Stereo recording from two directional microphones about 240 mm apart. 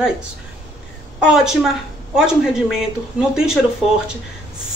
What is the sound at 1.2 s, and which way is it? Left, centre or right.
Speech, centre.